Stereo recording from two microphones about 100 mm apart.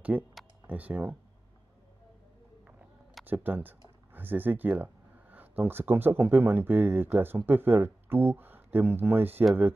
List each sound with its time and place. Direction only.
0.1 s speech: 15° right (ahead or behind)
3.4 s speech: 20° right (ahead or behind)